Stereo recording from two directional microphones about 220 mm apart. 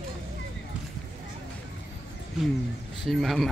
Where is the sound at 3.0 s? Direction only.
Centre (ahead or behind).